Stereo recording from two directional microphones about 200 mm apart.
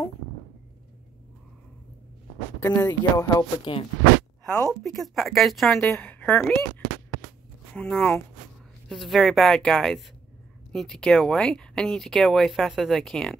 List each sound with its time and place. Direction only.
2.6 s speech: 10° left (ahead or behind)
4.5 s speech: 5° left (ahead or behind)
7.7 s speech: 5° left (ahead or behind)